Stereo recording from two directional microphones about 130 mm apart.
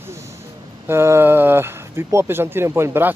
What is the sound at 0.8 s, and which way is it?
Speech, 20° right (ahead or behind).